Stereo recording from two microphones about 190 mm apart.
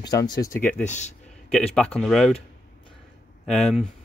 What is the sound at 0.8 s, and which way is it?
Speech, 40° left (ahead or behind).